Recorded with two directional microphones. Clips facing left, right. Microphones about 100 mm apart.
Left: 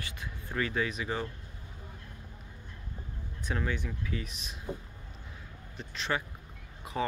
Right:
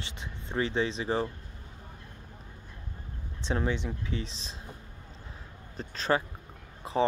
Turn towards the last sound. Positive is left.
turn(degrees=-30)  # may be behind; listen again after turning